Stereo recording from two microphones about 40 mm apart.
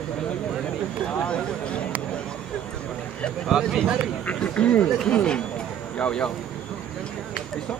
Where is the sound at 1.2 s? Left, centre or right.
Left.